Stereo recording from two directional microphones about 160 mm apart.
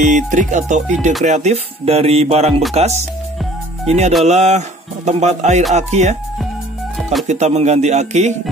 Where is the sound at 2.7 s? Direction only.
45° right (ahead or behind).